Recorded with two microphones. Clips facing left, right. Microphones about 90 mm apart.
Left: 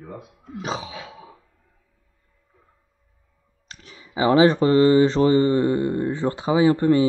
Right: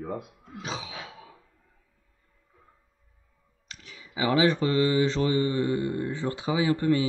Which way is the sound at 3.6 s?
35° left (ahead or behind).